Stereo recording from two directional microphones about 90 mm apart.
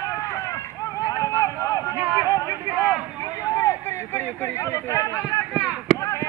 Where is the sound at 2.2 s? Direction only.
35° left (ahead or behind).